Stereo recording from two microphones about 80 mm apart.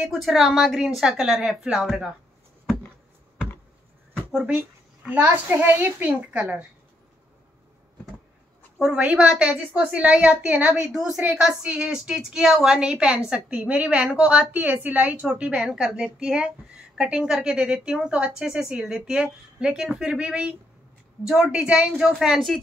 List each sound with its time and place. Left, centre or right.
0.0 s a woman's voice: centre
4.3 s speech: centre
4.6 s a child's voice: centre
8.7 s a woman's voice: centre